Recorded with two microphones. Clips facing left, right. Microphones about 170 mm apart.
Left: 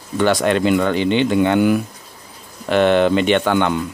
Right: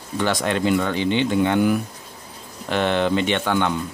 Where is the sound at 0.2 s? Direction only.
70° left (ahead or behind).